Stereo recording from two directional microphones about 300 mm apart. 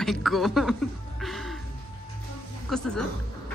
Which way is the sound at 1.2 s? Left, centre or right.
Centre.